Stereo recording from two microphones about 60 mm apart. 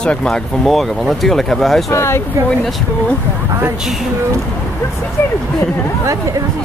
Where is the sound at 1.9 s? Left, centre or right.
Left.